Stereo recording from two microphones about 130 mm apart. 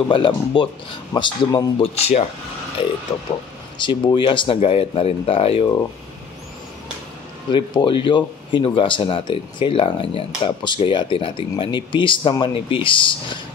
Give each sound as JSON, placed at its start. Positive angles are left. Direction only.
{"t": 0.1, "sound": "speech", "side_deg": 40}
{"t": 1.8, "sound": "speech", "side_deg": 55}
{"t": 3.1, "sound": "speech", "side_deg": 25}
{"t": 7.5, "sound": "speech", "side_deg": 40}